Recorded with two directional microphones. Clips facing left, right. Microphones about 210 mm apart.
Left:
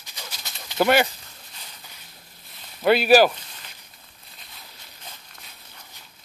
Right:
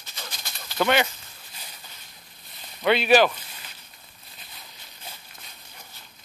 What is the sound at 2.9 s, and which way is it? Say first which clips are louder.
Speech: left 3 dB; 5° left (ahead or behind).